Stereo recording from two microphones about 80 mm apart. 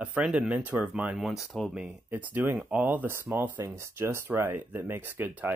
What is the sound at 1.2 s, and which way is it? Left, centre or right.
Speech, centre.